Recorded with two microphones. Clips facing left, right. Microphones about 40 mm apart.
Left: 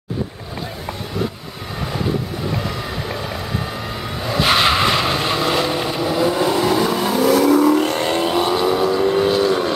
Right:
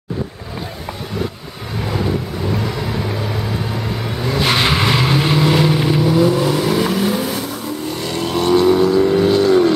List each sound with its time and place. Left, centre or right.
4.2 s vehicle: centre
6.9 s vehicle: left
7.2 s vehicle: left
8.0 s vehicle: left
8.3 s vehicle: centre